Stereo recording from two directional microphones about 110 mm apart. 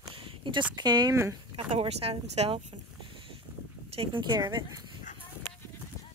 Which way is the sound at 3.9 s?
45° right (ahead or behind).